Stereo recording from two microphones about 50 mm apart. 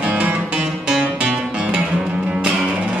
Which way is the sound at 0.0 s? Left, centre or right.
Right.